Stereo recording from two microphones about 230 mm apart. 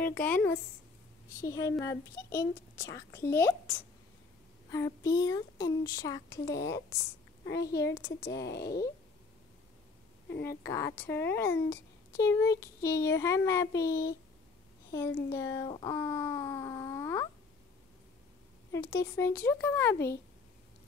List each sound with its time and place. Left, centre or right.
0.0 s a child's voice: centre
8.5 s speech: left
10.6 s a child's voice: centre
15.3 s a child's voice: centre
18.7 s a child's voice: centre